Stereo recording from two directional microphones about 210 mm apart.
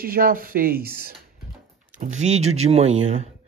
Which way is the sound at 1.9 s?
35° right (ahead or behind).